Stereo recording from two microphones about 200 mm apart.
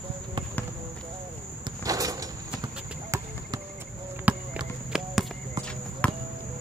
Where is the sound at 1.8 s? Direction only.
15° right (ahead or behind).